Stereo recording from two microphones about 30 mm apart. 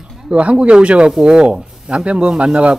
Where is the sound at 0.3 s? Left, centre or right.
Right.